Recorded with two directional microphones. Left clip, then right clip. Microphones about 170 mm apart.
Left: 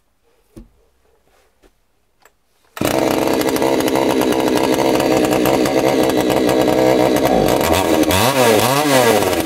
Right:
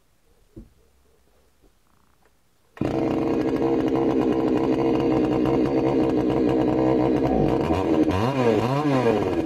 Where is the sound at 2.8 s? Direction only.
25° left (ahead or behind).